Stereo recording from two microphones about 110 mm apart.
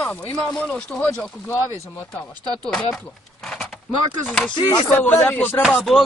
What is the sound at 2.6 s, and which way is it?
Speech, 5° left (ahead or behind).